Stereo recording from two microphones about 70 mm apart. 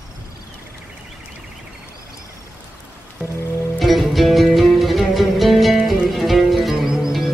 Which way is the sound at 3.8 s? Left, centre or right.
Centre.